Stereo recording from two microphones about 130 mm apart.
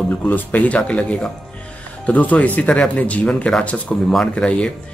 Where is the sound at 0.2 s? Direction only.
15° left (ahead or behind).